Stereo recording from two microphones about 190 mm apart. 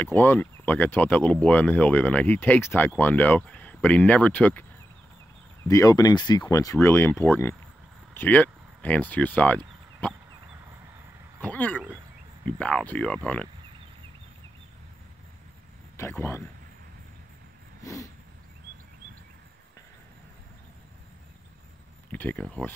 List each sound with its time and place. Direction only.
0.0 s speech: 10° left (ahead or behind)
5.7 s speech: 20° left (ahead or behind)
11.4 s speech: 10° left (ahead or behind)
16.0 s speech: 10° left (ahead or behind)
17.8 s vehicle: 15° left (ahead or behind)
22.1 s speech: 10° left (ahead or behind)